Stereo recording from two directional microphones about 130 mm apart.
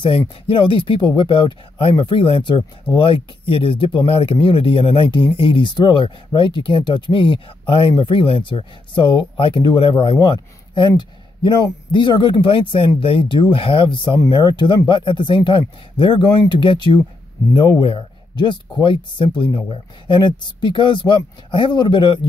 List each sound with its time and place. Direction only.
0.5 s speech: 40° left (ahead or behind)